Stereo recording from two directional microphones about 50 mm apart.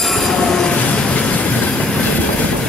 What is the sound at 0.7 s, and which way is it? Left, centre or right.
Train, left.